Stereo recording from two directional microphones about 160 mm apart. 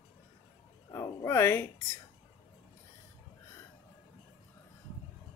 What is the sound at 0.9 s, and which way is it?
Speech, 20° left (ahead or behind).